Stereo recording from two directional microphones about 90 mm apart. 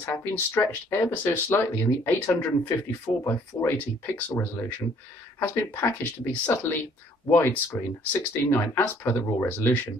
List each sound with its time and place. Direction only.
0.0 s speech: 20° left (ahead or behind)
3.1 s speech: 45° left (ahead or behind)
4.0 s speech: 25° left (ahead or behind)